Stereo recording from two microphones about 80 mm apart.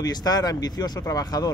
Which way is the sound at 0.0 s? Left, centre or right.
Left.